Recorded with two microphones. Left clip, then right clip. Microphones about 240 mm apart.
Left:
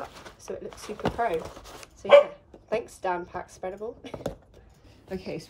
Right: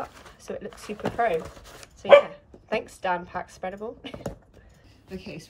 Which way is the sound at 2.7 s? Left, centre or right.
Centre.